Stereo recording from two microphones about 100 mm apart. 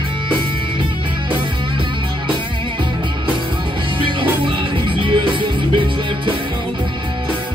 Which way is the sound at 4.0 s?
55° right (ahead or behind).